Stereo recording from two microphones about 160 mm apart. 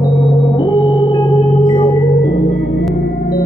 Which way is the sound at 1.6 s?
60° left (ahead or behind).